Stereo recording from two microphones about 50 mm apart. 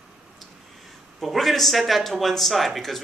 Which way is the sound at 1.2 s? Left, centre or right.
Centre.